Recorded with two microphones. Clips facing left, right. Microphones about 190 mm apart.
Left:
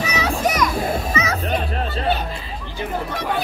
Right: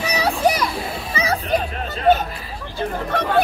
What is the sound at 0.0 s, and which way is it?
Children playing, 35° right (ahead or behind).